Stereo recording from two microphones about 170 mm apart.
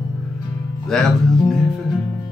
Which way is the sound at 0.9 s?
Centre (ahead or behind).